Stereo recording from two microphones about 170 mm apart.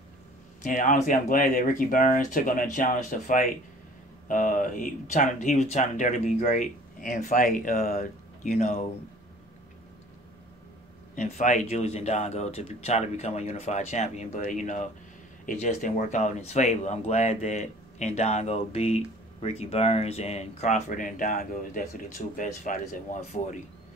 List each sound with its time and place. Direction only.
0.6 s speech: 50° left (ahead or behind)
8.5 s speech: 45° left (ahead or behind)
11.1 s speech: 45° left (ahead or behind)